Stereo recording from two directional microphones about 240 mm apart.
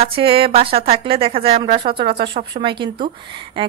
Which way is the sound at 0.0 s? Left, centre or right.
Right.